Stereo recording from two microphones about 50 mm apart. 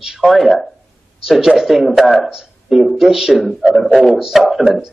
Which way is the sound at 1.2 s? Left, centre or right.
Centre.